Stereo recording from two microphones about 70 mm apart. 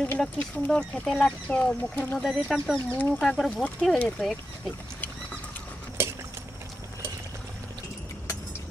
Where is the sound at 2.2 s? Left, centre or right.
Centre.